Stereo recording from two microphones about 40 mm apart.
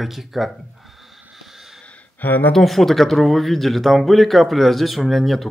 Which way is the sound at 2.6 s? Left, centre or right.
Centre.